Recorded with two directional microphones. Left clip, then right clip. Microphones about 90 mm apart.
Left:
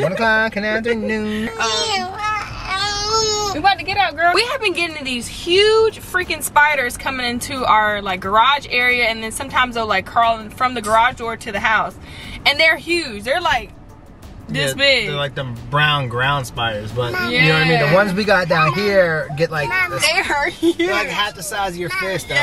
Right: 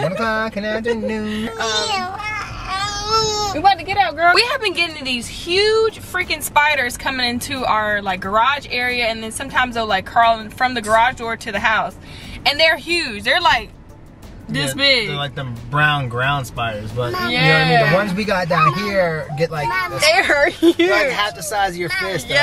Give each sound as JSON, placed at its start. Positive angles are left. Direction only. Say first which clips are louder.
{"t": 0.0, "sound": "speech", "louder": "left 4 dB", "side_deg": 20}
{"t": 1.2, "sound": "speech", "louder": "left 2 dB", "side_deg": -20}
{"t": 1.6, "sound": "baby cry", "louder": "left 1 dB", "side_deg": 15}
{"t": 3.5, "sound": "speech", "louder": "right 2 dB", "side_deg": -20}
{"t": 7.5, "sound": "speech", "louder": "left 4 dB", "side_deg": -5}
{"t": 15.9, "sound": "speech", "louder": "left 1 dB", "side_deg": 20}
{"t": 17.2, "sound": "speech", "louder": "even", "side_deg": -20}
{"t": 17.9, "sound": "speech", "louder": "left 4 dB", "side_deg": 20}
{"t": 20.0, "sound": "speech", "louder": "right 8 dB", "side_deg": -20}